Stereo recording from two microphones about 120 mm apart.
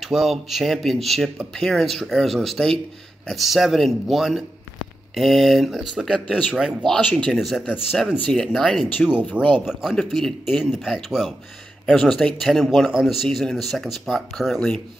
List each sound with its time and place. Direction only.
0.0 s speech: centre (ahead or behind)
7.1 s speech: 10° left (ahead or behind)
9.4 s speech: 10° right (ahead or behind)